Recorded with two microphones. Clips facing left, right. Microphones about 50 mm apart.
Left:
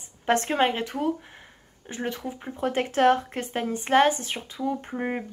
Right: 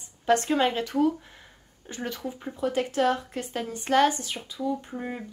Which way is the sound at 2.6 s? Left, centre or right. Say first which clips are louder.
Left 2 dB; left.